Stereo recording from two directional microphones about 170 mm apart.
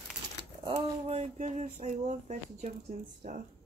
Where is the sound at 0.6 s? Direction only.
35° right (ahead or behind); by 3.4 s 55° right (ahead or behind).